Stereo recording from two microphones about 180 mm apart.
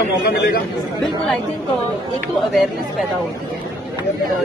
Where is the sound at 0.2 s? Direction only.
55° left (ahead or behind).